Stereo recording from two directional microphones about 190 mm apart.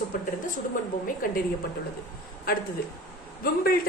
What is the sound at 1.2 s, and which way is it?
Speech, 50° left (ahead or behind).